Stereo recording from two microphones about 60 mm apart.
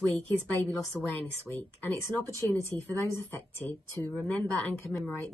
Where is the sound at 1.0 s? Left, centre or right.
Right.